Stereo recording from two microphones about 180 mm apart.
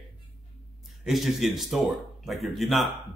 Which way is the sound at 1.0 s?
Centre (ahead or behind).